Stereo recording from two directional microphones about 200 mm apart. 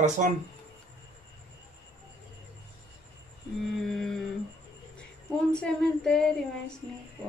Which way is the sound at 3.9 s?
Centre (ahead or behind).